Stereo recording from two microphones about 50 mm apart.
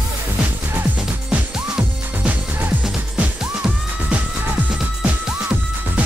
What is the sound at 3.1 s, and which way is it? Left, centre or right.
Music, right.